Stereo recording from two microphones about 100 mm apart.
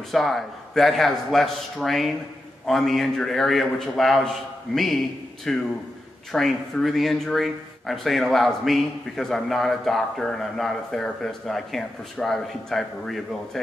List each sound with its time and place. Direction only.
0.1 s speech: centre (ahead or behind)